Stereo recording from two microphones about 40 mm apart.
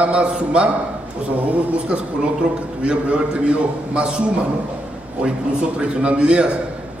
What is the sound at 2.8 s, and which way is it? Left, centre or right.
A man's voice, right.